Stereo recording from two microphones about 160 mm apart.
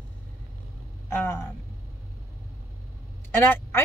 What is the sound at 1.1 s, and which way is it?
Speech, 15° left (ahead or behind).